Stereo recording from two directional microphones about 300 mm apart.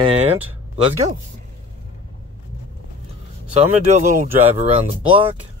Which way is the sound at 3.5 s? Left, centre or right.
Right.